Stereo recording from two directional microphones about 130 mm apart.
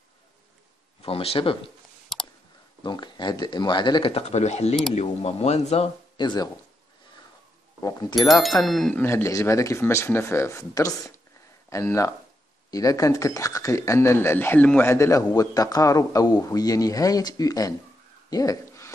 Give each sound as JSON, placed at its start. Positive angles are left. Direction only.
{"t": 1.0, "sound": "a man's voice", "side_deg": 50}
{"t": 2.1, "sound": "a sound", "side_deg": 0}
{"t": 2.8, "sound": "speech", "side_deg": 35}
{"t": 4.1, "sound": "speech", "side_deg": 60}
{"t": 6.1, "sound": "speech", "side_deg": 35}
{"t": 7.8, "sound": "speech", "side_deg": 30}
{"t": 8.3, "sound": "speech", "side_deg": 0}
{"t": 8.9, "sound": "speech", "side_deg": 20}
{"t": 18.3, "sound": "a sound", "side_deg": 30}